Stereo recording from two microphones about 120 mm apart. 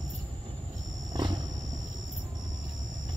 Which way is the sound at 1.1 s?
35° right (ahead or behind).